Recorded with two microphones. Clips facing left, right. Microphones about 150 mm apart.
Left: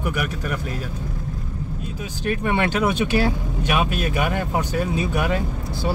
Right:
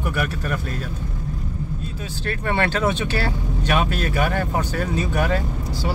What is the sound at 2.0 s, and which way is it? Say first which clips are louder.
Speech: left 5 dB; 15° left (ahead or behind).